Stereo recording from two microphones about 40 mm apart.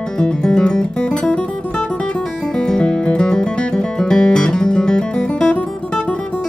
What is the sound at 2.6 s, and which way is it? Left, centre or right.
Music, left.